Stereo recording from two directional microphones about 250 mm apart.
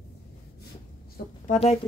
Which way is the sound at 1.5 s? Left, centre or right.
Left.